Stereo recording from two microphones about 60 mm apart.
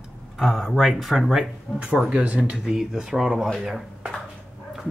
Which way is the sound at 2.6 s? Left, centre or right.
Centre.